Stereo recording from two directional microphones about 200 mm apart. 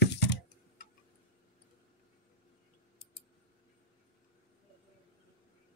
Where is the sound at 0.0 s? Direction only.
55° left (ahead or behind).